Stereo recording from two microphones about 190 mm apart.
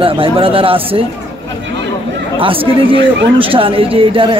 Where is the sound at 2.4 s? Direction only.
30° right (ahead or behind).